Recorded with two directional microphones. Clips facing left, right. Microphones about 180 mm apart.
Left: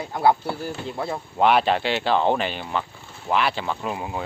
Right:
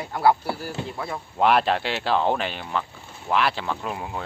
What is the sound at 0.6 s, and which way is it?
Speech, 25° left (ahead or behind).